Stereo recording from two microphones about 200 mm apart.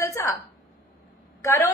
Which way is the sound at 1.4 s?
10° left (ahead or behind).